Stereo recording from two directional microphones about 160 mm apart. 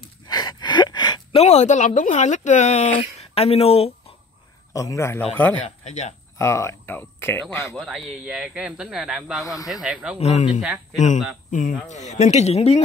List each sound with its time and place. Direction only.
0.0 s gasp: 25° left (ahead or behind)
1.4 s speech: 40° left (ahead or behind)
4.7 s a man's voice: 20° left (ahead or behind)
5.9 s speech: 45° left (ahead or behind)
6.3 s speech: 15° left (ahead or behind)
7.7 s speech: centre (ahead or behind)
10.1 s speech: 45° left (ahead or behind)
10.6 s speech: 5° right (ahead or behind)
11.5 s speech: 50° left (ahead or behind)